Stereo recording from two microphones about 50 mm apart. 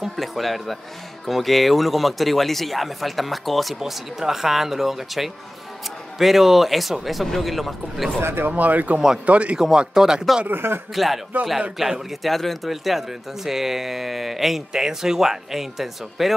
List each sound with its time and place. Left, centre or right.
0.1 s speech: centre
8.2 s speech: right
8.5 s speech: right
9.6 s speech: centre
10.5 s speech: right
11.3 s speech: right
12.1 s speech: centre